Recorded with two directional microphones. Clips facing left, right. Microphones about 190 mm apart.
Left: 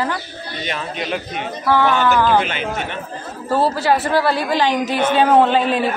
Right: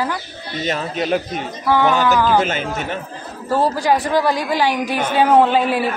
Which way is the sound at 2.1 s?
5° right (ahead or behind).